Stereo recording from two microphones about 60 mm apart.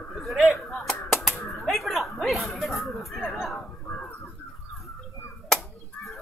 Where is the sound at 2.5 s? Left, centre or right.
Centre.